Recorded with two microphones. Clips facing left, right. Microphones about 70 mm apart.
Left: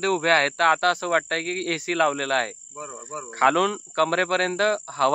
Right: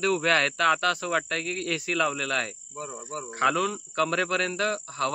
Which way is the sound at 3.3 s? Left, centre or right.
Left.